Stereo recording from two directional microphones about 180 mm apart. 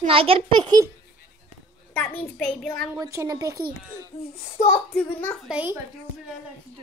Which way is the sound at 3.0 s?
20° right (ahead or behind).